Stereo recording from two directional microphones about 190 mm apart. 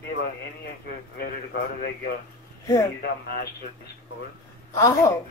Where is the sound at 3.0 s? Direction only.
55° left (ahead or behind).